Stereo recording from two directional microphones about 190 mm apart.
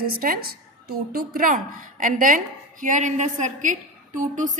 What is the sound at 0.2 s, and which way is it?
A woman's voice, 50° right (ahead or behind).